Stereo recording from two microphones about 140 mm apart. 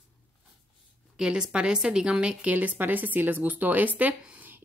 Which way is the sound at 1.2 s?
5° right (ahead or behind).